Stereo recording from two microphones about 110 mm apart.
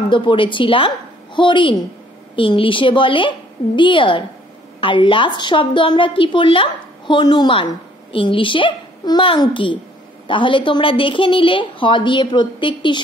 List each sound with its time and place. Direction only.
0.1 s a woman's voice: 50° left (ahead or behind)